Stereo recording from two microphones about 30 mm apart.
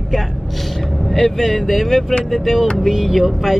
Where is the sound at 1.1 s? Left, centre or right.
Centre.